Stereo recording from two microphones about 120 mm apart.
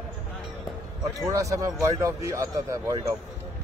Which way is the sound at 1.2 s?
30° right (ahead or behind).